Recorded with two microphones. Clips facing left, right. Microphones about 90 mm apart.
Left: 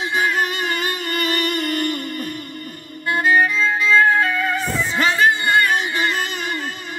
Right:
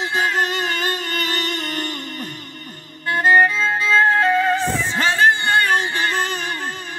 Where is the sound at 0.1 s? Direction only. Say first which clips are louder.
Even; 30° right (ahead or behind).